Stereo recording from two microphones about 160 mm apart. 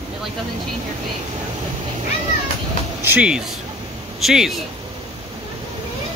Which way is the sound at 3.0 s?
10° right (ahead or behind).